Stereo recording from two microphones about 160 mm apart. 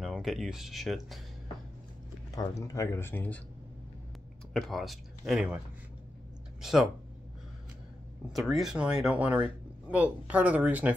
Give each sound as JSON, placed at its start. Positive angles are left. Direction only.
{"t": 0.1, "sound": "speech", "side_deg": 0}
{"t": 2.3, "sound": "speech", "side_deg": 20}
{"t": 4.6, "sound": "speech", "side_deg": 0}
{"t": 6.6, "sound": "speech", "side_deg": 0}
{"t": 8.3, "sound": "speech", "side_deg": 0}